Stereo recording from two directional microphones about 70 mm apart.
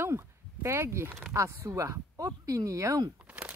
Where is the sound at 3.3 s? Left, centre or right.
Right.